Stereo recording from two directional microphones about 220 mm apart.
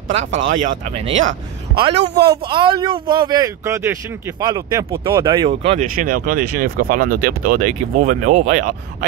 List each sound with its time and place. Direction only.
0.3 s speech: 60° right (ahead or behind)
1.0 s speech: 30° right (ahead or behind)
5.9 s speech: 40° right (ahead or behind)